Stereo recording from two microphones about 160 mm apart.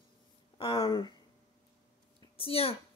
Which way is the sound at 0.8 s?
35° left (ahead or behind).